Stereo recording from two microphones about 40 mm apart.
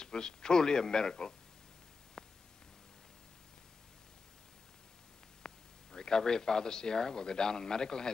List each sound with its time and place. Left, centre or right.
0.0 s a man's voice: centre
2.2 s a sound: centre
5.4 s speech: centre